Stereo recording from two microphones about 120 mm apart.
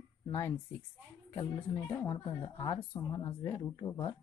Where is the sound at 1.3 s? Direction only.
50° left (ahead or behind).